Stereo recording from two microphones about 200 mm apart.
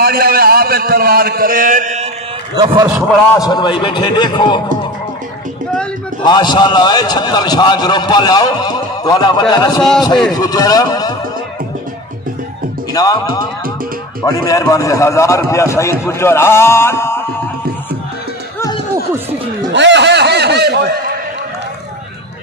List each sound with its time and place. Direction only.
0.0 s a man's voice: 50° right (ahead or behind)
2.5 s a man's voice: 20° right (ahead or behind)
3.3 s a man's voice: 20° left (ahead or behind)
6.2 s a man's voice: 20° left (ahead or behind)
12.9 s speech: 20° left (ahead or behind)
14.2 s a man's voice: 15° left (ahead or behind)
19.7 s speech: 60° right (ahead or behind)